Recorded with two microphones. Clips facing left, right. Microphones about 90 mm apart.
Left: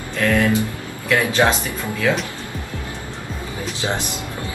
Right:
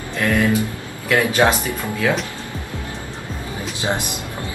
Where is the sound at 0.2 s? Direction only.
20° right (ahead or behind).